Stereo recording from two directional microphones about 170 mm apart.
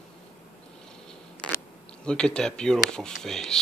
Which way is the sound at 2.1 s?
5° left (ahead or behind).